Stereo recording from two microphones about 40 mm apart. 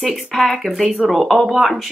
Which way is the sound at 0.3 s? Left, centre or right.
Centre.